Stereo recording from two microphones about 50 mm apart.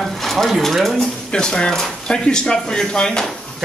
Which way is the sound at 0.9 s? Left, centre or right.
Centre.